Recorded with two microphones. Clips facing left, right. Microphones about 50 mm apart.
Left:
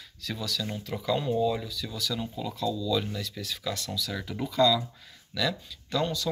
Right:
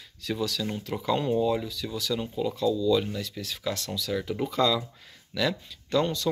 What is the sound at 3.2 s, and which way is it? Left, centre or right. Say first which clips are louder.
Speech: right 2 dB; right.